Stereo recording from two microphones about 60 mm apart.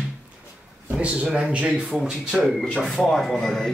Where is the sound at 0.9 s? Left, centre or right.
Centre.